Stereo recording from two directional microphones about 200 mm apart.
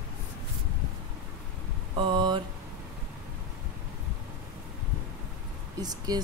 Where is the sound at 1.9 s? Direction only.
25° right (ahead or behind).